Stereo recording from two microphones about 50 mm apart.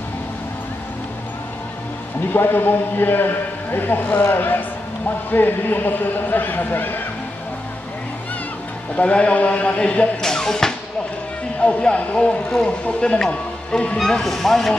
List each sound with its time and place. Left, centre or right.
2.3 s a man's voice: left
8.9 s a man's voice: left
10.2 s music: centre
11.6 s a man's voice: left
13.9 s speech: centre